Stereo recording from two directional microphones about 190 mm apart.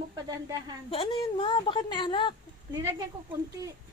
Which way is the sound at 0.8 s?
30° left (ahead or behind).